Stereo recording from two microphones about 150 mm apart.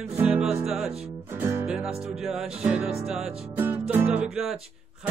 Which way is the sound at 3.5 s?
15° right (ahead or behind).